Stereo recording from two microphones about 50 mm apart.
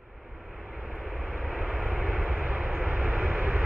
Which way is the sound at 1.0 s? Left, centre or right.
Centre.